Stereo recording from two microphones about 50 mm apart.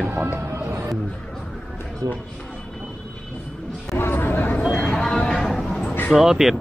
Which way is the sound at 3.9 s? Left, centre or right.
Left.